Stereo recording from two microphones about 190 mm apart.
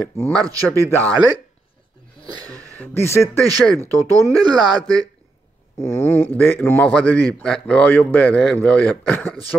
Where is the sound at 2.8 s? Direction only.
15° left (ahead or behind).